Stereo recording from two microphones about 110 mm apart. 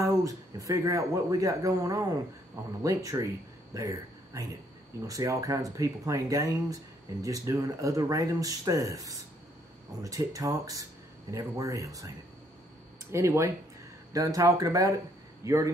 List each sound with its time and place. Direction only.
0.0 s speech: 30° right (ahead or behind)
13.1 s speech: 25° right (ahead or behind)